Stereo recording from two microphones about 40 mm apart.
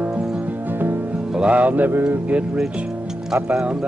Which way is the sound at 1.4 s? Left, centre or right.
Right.